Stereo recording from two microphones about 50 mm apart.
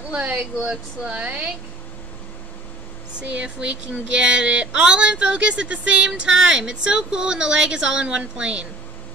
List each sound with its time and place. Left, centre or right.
0.1 s speech: right
0.6 s speech: centre
3.2 s speech: right